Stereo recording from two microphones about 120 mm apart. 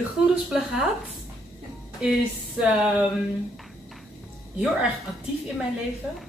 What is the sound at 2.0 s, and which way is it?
Speech, 10° right (ahead or behind).